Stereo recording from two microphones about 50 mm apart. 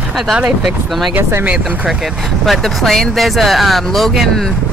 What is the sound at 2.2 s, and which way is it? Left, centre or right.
Speech, centre.